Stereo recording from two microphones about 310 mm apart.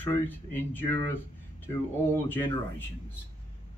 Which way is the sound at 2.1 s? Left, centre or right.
Centre.